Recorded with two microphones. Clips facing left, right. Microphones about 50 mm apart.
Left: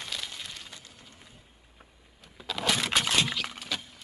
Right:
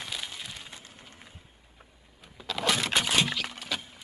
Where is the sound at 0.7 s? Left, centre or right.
Right.